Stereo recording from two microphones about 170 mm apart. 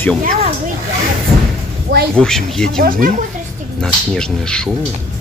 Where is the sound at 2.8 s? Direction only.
55° right (ahead or behind).